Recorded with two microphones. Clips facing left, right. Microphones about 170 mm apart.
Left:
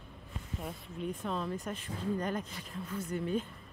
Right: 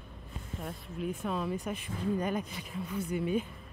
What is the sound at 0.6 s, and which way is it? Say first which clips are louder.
Speech: right 2 dB; centre (ahead or behind).